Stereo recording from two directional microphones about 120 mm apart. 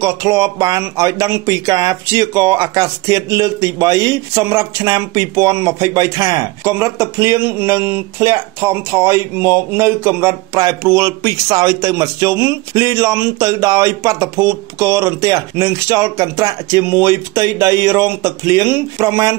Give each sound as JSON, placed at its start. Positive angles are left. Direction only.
{"t": 0.0, "sound": "speech", "side_deg": -25}